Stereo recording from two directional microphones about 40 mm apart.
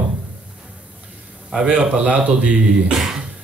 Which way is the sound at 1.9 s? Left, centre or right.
Right.